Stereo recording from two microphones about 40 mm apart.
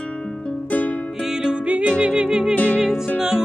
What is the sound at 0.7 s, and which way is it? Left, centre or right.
Music, left.